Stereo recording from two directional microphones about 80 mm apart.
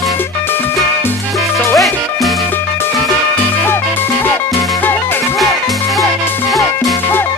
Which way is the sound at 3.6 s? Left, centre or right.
Left.